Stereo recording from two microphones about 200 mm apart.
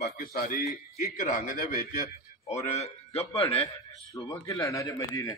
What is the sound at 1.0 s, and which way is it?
A man's voice, 40° left (ahead or behind).